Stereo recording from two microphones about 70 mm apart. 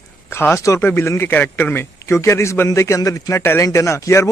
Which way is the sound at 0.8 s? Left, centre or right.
Left.